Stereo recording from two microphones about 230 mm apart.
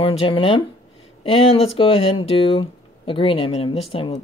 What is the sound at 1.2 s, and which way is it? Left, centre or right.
Speech, left.